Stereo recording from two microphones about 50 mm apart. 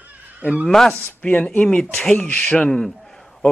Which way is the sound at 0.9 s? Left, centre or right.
Left.